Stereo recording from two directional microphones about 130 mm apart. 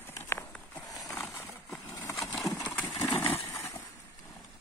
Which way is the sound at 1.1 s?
20° left (ahead or behind).